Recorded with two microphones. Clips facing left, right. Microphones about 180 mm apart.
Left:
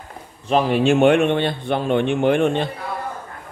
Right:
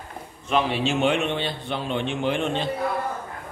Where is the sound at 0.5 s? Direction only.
45° left (ahead or behind).